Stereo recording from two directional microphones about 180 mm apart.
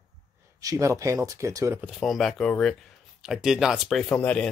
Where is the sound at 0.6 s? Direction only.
15° right (ahead or behind).